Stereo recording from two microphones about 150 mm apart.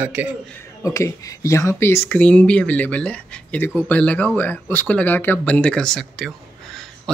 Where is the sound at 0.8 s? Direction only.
20° left (ahead or behind).